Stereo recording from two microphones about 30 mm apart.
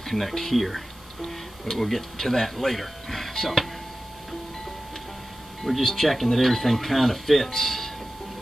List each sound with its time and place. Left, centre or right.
0.0 s speech: centre
5.6 s speech: centre